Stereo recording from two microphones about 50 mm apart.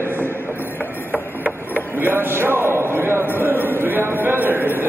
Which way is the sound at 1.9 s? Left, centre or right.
Right.